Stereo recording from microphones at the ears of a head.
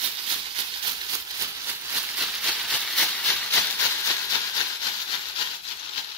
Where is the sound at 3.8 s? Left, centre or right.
Left.